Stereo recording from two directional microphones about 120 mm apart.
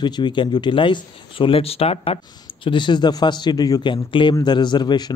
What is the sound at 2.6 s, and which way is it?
A man's voice, 40° left (ahead or behind).